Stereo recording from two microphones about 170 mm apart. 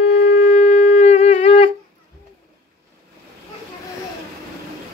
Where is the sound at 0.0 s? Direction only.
40° left (ahead or behind).